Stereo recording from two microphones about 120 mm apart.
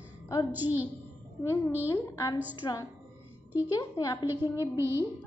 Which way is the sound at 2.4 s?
15° right (ahead or behind).